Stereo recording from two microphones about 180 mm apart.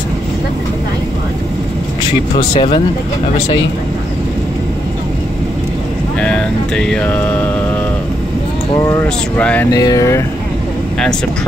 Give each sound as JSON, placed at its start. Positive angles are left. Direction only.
{"t": 2.5, "sound": "speech", "side_deg": 30}
{"t": 6.2, "sound": "mantra", "side_deg": 5}
{"t": 8.7, "sound": "mantra", "side_deg": 15}
{"t": 9.7, "sound": "speech", "side_deg": 20}